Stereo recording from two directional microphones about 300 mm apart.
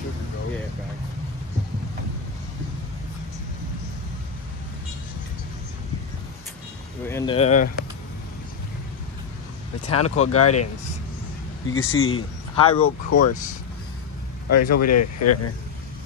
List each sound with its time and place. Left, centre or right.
7.1 s speech: centre
9.8 s speech: left
11.7 s speech: left
12.5 s speech: centre
13.1 s speech: left
14.5 s speech: left